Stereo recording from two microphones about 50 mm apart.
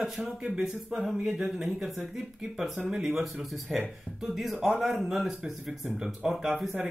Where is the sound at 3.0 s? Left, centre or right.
Centre.